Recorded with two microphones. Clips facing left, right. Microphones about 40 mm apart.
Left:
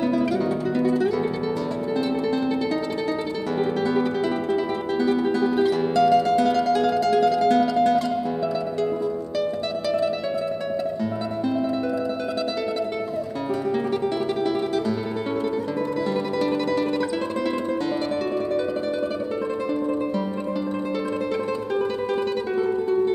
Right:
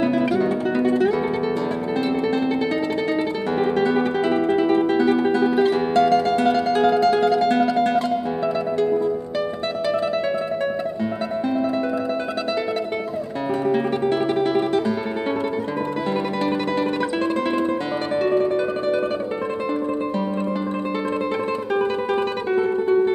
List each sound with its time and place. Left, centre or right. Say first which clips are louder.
0.0 s music: right 3 dB; right
2.7 s music: right 3 dB; right
13.7 s music: right 4 dB; right
17.4 s music: right 3 dB; right